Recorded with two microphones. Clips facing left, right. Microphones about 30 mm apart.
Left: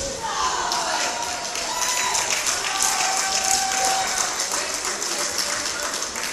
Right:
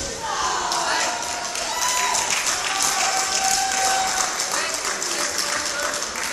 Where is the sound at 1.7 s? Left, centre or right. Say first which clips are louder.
Right 2 dB; centre.